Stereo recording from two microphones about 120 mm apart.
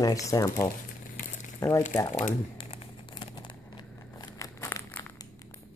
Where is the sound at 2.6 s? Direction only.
45° left (ahead or behind).